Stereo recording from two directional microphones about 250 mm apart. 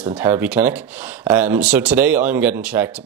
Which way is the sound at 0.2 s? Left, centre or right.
Centre.